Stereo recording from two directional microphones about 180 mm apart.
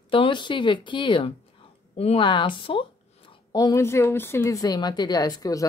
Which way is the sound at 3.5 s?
20° left (ahead or behind).